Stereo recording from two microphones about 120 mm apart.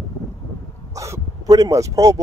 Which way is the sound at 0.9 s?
25° right (ahead or behind).